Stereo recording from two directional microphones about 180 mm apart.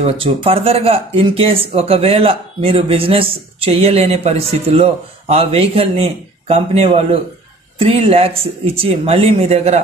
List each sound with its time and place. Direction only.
0.0 s speech: 30° right (ahead or behind)